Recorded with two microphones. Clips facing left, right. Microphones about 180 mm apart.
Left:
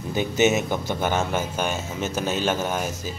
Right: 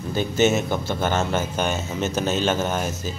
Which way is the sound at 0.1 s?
15° left (ahead or behind).